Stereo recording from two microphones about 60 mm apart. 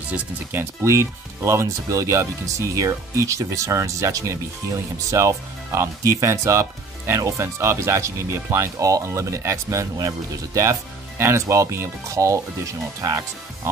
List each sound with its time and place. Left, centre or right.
0.5 s speech: right
0.8 s speech: right